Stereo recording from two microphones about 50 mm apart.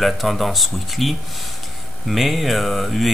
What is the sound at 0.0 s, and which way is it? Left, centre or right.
Speech, centre.